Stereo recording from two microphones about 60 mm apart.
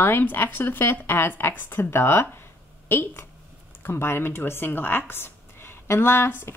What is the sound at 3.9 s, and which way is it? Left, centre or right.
Speech, left.